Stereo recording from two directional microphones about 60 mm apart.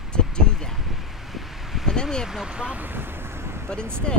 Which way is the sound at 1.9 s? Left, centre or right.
Centre.